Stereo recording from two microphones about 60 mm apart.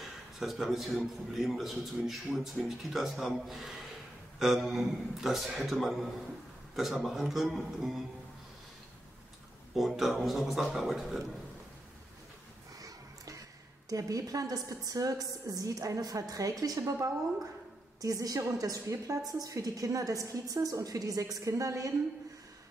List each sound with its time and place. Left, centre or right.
0.0 s a man's voice: centre
9.8 s a man's voice: centre
12.8 s a sound: right
13.8 s a woman's voice: right